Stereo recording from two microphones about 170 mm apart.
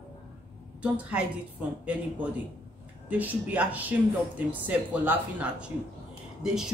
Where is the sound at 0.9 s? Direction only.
10° right (ahead or behind).